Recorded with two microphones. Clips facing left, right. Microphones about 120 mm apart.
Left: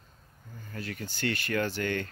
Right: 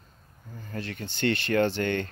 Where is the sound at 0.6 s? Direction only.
35° right (ahead or behind).